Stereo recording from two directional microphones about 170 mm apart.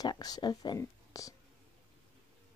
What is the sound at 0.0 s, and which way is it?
Speech, 25° left (ahead or behind).